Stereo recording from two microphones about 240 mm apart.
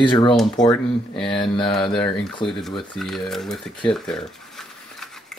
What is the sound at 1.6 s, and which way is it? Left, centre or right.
Speech, centre.